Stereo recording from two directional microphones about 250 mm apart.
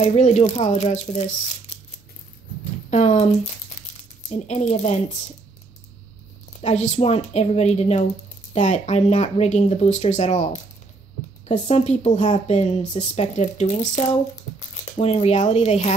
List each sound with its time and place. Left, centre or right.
0.0 s a woman's voice: left
2.9 s speech: left
4.3 s a woman's voice: left
6.6 s a woman's voice: left